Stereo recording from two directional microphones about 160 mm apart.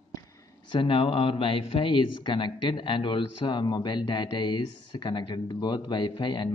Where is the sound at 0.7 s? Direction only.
30° left (ahead or behind).